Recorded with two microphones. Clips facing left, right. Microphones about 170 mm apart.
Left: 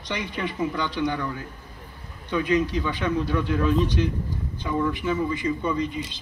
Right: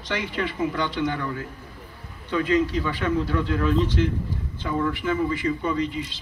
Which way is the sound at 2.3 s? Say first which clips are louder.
Right 1 dB; 20° left (ahead or behind).